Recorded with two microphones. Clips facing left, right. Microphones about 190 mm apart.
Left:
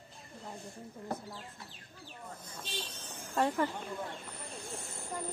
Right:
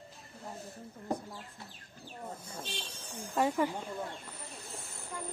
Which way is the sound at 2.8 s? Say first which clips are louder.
Right 1 dB; 10° right (ahead or behind).